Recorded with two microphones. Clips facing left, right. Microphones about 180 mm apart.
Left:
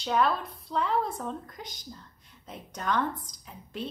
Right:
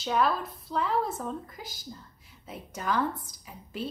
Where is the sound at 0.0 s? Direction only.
Centre (ahead or behind).